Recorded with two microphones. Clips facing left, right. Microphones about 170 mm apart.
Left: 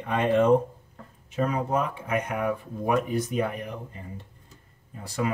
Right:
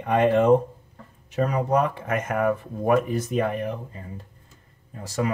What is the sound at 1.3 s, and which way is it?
Speech, 65° right (ahead or behind).